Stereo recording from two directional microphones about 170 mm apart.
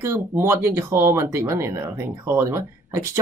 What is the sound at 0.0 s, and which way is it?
Speech, 15° right (ahead or behind).